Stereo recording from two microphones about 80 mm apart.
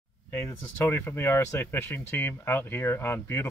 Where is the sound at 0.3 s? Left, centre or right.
Left.